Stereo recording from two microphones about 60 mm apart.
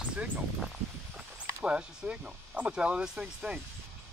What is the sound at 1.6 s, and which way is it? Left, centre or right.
Speech, centre.